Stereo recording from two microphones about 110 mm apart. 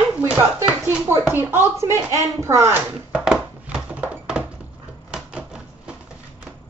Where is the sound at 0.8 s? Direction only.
20° right (ahead or behind).